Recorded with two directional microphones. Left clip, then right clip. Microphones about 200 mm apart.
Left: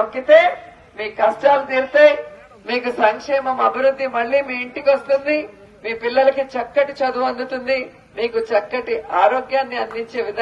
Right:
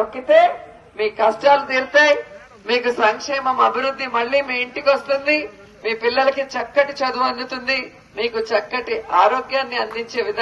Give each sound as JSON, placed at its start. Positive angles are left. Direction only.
{"t": 0.1, "sound": "a man's voice", "side_deg": 55}